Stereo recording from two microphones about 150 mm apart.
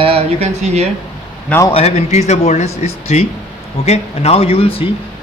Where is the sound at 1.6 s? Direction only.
40° left (ahead or behind).